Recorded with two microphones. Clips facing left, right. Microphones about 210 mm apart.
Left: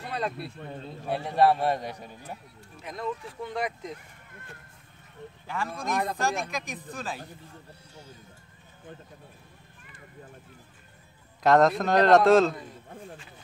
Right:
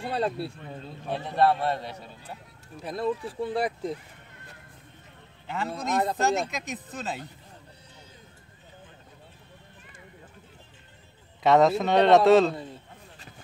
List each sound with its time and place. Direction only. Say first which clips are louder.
0.0 s speech: right 4 dB; 30° right (ahead or behind)
0.7 s a man's voice: left 1 dB; centre (ahead or behind)
1.1 s a man's voice: left 1 dB; 10° left (ahead or behind)
2.8 s speech: right 5 dB; 35° right (ahead or behind)
5.5 s speech: right 2 dB; 20° right (ahead or behind)
11.4 s a man's voice: right 1 dB; centre (ahead or behind)